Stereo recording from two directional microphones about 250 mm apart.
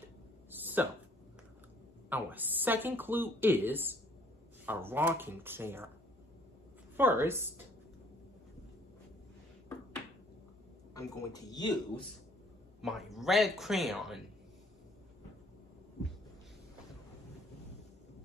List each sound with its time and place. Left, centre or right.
0.5 s a sound: centre
2.0 s speech: centre
7.0 s speech: centre
11.0 s speech: centre
12.8 s speech: centre